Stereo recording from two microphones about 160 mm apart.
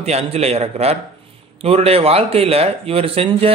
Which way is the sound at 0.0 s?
40° right (ahead or behind).